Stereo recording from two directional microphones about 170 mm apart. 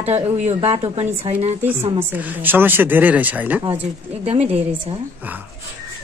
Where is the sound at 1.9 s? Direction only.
10° right (ahead or behind).